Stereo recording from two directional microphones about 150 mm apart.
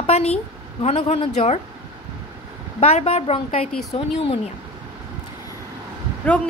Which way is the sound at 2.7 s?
45° left (ahead or behind).